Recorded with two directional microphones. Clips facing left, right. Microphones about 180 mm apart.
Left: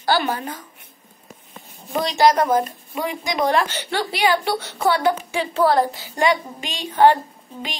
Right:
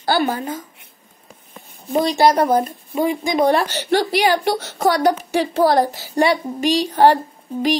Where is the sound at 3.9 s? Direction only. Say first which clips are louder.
Right 4 dB; 45° right (ahead or behind).